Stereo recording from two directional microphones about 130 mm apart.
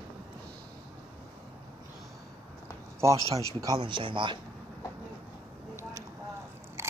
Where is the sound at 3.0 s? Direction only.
25° right (ahead or behind); by 4.4 s 40° right (ahead or behind).